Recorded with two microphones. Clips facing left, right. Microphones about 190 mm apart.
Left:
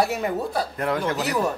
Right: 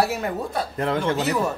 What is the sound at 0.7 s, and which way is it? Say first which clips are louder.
Speech: right 4 dB; 30° right (ahead or behind).